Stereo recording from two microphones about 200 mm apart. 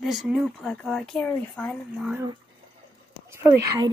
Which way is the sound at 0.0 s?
Centre (ahead or behind).